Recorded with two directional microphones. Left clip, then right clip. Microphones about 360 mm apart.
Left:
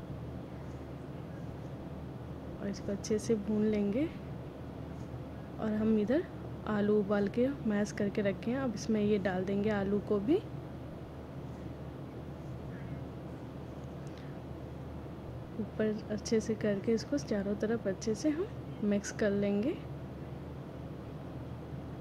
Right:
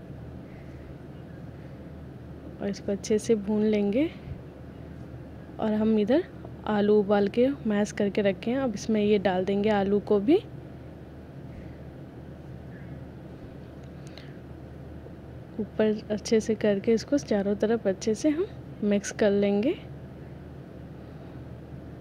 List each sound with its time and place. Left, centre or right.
2.6 s speech: centre
5.6 s speech: centre
15.8 s speech: centre